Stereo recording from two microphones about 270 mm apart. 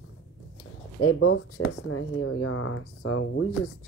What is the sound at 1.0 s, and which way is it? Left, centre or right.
Speech, left.